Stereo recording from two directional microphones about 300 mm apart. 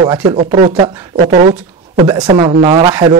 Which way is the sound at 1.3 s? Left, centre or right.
Right.